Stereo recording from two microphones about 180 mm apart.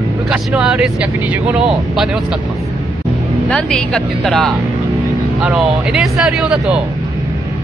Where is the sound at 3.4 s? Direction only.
5° left (ahead or behind).